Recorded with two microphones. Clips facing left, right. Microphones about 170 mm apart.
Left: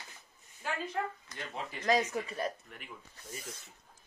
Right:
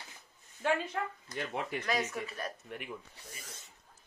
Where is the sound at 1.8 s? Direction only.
30° left (ahead or behind).